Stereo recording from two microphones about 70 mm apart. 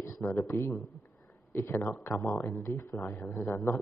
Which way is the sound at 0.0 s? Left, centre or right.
Left.